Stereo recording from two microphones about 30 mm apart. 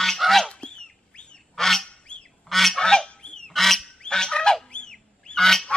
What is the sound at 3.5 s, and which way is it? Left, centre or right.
Goose, centre.